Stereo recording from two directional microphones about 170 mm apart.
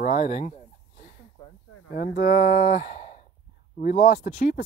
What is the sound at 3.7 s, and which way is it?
Speech, 55° left (ahead or behind).